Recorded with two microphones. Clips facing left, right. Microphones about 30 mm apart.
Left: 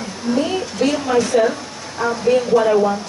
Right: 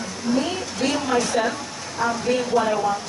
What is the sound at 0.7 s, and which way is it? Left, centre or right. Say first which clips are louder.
A woman's voice: left 4 dB; centre.